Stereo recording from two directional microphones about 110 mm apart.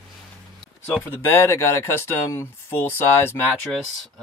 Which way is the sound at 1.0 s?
20° left (ahead or behind).